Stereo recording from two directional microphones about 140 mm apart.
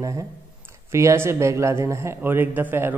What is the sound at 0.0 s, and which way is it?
Speech, 20° right (ahead or behind).